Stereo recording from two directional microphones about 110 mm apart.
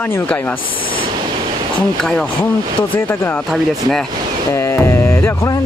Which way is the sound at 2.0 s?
5° left (ahead or behind).